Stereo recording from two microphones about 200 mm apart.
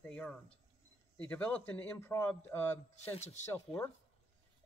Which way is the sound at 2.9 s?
35° left (ahead or behind).